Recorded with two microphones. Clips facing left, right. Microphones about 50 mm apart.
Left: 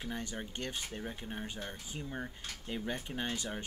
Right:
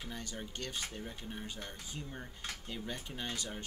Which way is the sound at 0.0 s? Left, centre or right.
Left.